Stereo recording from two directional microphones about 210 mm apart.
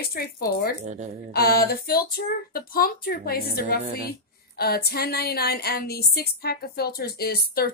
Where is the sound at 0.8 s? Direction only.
35° right (ahead or behind).